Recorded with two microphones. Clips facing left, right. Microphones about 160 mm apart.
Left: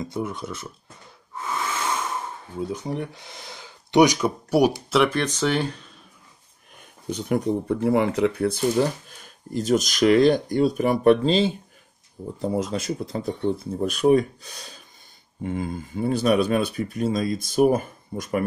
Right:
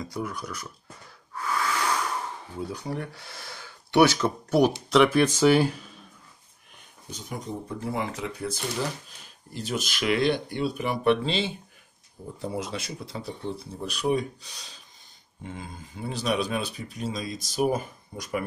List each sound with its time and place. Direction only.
0.0 s speech: 25° left (ahead or behind)
1.3 s wheeze: 20° left (ahead or behind)
2.6 s speech: 20° left (ahead or behind); by 5.9 s 5° right (ahead or behind)
7.1 s speech: 65° left (ahead or behind)